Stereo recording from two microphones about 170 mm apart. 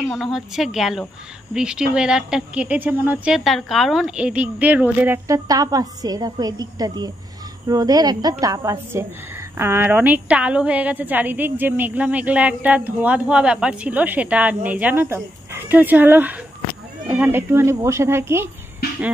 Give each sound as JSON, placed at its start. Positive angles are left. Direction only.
{"t": 0.1, "sound": "a woman's voice", "side_deg": 0}